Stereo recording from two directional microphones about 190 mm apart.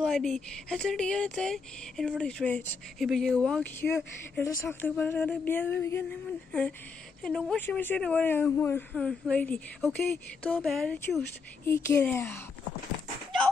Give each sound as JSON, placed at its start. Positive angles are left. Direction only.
{"t": 0.0, "sound": "speech", "side_deg": 0}
{"t": 7.2, "sound": "speech", "side_deg": 5}